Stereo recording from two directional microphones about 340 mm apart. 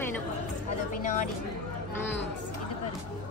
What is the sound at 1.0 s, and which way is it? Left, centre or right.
Speech, left.